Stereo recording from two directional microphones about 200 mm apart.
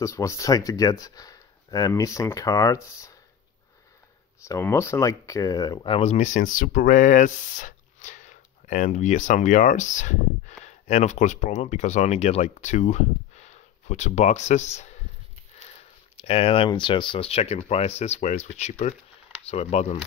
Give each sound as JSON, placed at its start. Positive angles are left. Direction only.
{"t": 0.0, "sound": "speech", "side_deg": 15}
{"t": 4.5, "sound": "speech", "side_deg": 15}
{"t": 16.2, "sound": "speech", "side_deg": 30}